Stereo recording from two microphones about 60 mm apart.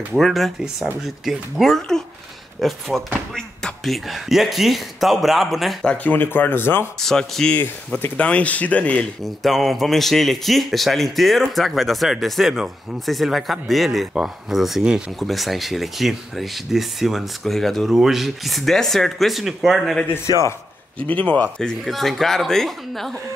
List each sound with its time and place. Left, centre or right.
0.2 s a man's voice: centre
1.8 s a man's voice: centre
6.0 s speech: left
7.0 s speech: centre
8.0 s speech: left
9.2 s a man's voice: centre
14.8 s speech: centre
15.1 s a man's voice: centre
21.1 s speech: left
21.8 s a man's voice: centre